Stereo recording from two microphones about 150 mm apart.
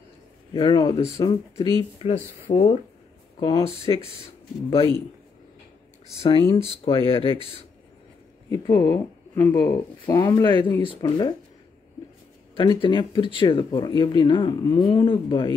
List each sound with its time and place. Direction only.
0.5 s speech: 30° left (ahead or behind)
2.0 s speech: 45° left (ahead or behind)
6.5 s speech: 40° left (ahead or behind)
8.6 s speech: 30° left (ahead or behind)
9.3 s speech: 20° left (ahead or behind)
12.5 s speech: 35° left (ahead or behind)